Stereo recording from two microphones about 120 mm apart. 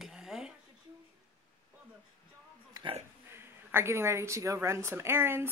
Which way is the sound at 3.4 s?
20° right (ahead or behind).